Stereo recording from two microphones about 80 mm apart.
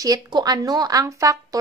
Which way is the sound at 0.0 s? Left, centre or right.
Right.